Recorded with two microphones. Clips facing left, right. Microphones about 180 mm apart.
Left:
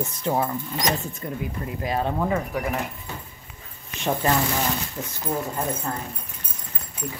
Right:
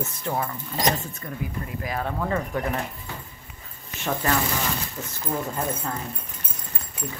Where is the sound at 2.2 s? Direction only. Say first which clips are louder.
Left 1 dB; 10° left (ahead or behind).